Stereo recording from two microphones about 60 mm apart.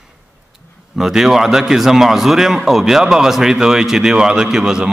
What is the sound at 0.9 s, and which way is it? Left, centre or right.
A man's voice, centre.